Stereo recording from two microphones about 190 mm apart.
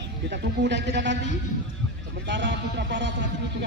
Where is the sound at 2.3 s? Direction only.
70° right (ahead or behind).